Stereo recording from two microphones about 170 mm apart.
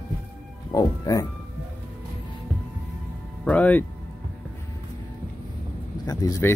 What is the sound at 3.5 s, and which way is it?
Speech, 10° left (ahead or behind).